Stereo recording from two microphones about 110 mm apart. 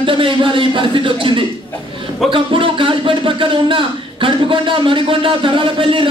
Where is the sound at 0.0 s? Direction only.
50° right (ahead or behind).